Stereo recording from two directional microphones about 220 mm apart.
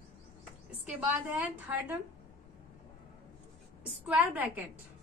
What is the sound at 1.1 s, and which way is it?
Speech, 5° right (ahead or behind).